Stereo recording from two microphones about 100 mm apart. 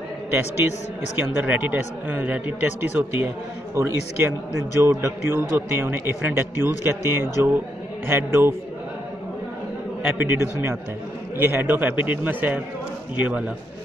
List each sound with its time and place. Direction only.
0.3 s a man's voice: 20° right (ahead or behind)
10.1 s a man's voice: 25° right (ahead or behind)